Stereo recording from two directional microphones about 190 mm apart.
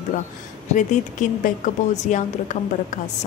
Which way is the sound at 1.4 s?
40° left (ahead or behind).